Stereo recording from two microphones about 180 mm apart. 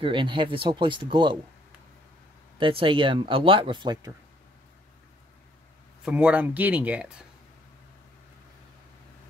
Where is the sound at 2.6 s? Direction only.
30° right (ahead or behind).